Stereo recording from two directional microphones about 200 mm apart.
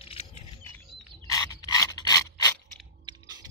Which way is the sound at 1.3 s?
15° left (ahead or behind).